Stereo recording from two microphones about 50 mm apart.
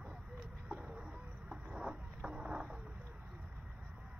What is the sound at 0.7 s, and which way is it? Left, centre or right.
Chicken, right.